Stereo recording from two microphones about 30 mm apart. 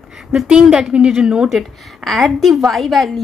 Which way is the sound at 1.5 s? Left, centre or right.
Centre.